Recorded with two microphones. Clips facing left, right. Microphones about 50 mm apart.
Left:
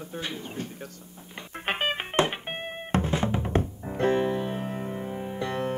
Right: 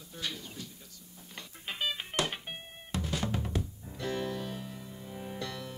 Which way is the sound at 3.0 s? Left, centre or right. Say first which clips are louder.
Left 7 dB; left.